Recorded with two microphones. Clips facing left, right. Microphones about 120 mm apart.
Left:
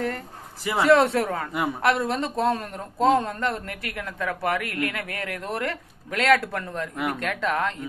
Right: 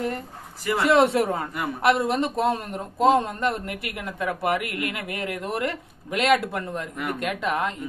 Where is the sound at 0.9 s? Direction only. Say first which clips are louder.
Right 1 dB; 25° right (ahead or behind).